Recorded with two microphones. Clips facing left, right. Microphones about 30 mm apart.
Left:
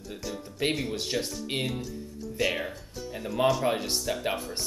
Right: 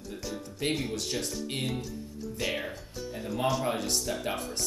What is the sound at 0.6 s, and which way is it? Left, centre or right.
Speech, centre.